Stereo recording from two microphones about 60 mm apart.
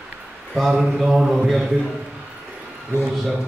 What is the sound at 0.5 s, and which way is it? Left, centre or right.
A man's voice, centre.